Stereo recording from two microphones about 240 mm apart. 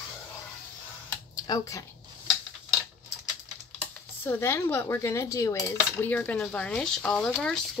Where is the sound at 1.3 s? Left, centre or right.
Centre.